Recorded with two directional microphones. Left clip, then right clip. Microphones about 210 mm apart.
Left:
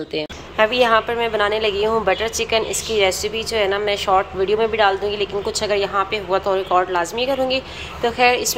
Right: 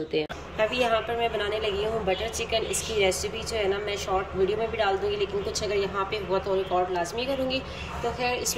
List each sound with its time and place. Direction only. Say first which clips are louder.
0.1 s a woman's voice: left 3 dB; 5° right (ahead or behind)